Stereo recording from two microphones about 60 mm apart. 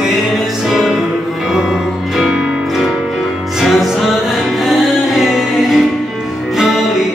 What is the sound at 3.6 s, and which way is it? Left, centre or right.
Music, centre.